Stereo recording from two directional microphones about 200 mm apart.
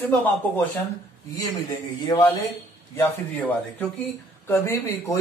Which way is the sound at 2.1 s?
20° left (ahead or behind).